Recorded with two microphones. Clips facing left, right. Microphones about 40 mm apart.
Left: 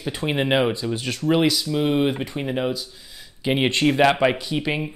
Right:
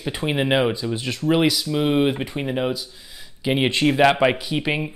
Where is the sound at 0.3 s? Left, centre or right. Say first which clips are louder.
Even; centre.